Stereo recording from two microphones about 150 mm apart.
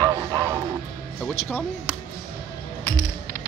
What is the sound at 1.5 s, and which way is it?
Speech, 15° left (ahead or behind).